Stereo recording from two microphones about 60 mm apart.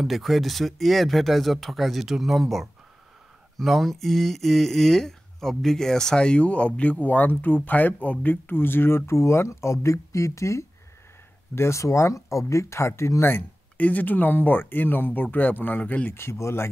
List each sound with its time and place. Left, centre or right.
0.0 s speech: centre; by 13.3 s left
13.3 s speech: left
16.1 s speech: left